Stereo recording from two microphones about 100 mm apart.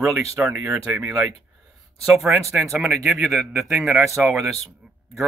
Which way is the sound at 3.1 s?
Centre (ahead or behind).